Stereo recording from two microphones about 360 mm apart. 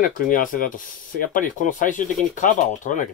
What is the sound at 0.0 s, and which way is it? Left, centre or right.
Speech, left.